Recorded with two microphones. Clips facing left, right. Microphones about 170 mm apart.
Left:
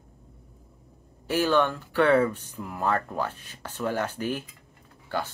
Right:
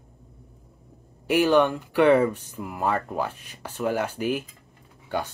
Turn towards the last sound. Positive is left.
turn(degrees=-15)  # may be behind; listen again after turning